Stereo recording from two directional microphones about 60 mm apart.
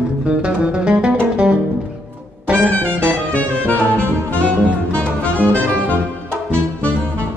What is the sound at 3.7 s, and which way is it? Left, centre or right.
Saxophone, left.